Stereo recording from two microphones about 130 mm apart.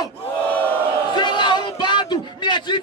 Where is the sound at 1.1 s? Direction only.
35° left (ahead or behind).